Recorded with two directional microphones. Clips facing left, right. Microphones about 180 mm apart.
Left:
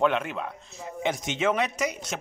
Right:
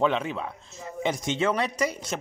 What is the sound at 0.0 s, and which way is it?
Speech, 10° left (ahead or behind).